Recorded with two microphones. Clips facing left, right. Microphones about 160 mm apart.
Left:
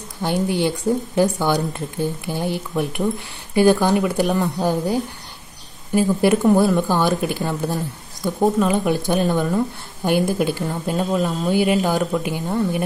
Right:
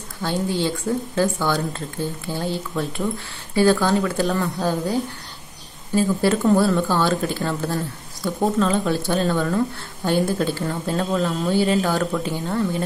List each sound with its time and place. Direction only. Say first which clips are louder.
0.2 s speech: left 3 dB; 15° left (ahead or behind)
5.9 s speech: left 2 dB; 15° left (ahead or behind)